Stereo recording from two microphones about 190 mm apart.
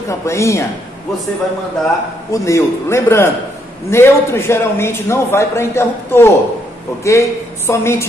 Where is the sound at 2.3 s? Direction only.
15° left (ahead or behind).